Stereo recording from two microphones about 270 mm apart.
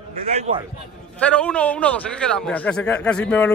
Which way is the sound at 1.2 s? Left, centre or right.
Centre.